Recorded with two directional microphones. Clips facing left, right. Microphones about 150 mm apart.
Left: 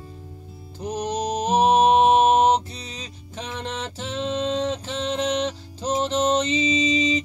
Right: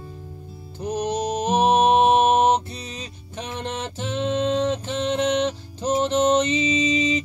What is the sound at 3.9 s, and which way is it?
Music, 35° left (ahead or behind).